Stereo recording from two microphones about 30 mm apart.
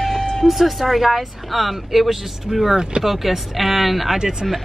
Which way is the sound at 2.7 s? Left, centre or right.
Right.